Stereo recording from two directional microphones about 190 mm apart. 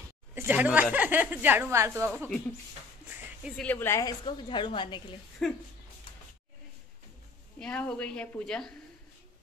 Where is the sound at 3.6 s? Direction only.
10° left (ahead or behind); by 5.2 s 25° left (ahead or behind).